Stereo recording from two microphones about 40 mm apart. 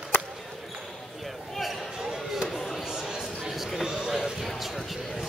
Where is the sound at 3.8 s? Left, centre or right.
Centre.